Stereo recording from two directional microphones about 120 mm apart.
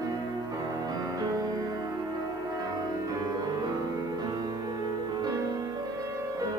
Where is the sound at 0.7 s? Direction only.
30° right (ahead or behind).